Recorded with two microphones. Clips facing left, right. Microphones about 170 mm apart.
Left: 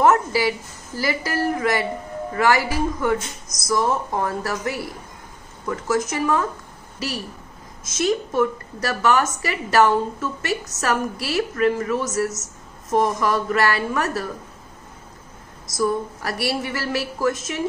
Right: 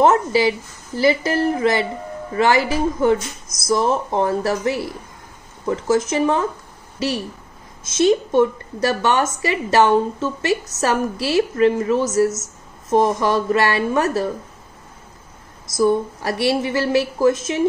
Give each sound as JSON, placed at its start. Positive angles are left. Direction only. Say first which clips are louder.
{"t": 0.0, "sound": "a woman's voice", "louder": "right 3 dB", "side_deg": -25}
{"t": 15.8, "sound": "a woman's voice", "louder": "right 5 dB", "side_deg": -25}